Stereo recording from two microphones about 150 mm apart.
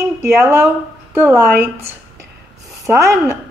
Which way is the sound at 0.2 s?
15° right (ahead or behind).